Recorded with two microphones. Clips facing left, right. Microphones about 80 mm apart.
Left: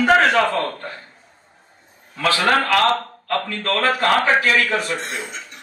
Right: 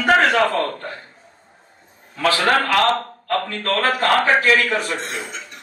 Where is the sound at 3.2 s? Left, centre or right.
Right.